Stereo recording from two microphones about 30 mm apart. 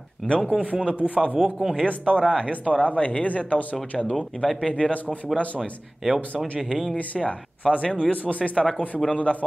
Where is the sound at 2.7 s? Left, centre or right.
Left.